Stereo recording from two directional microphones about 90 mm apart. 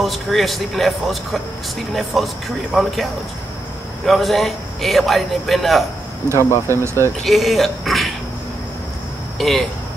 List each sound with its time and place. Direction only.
0.0 s a man's voice: centre (ahead or behind)
6.7 s speech: 30° right (ahead or behind)
7.2 s a man's voice: centre (ahead or behind)
9.4 s a man's voice: centre (ahead or behind)